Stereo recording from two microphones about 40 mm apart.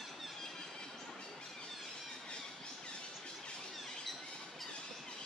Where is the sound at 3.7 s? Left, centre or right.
Centre.